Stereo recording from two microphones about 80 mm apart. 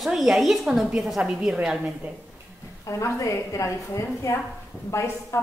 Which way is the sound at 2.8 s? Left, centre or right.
Left.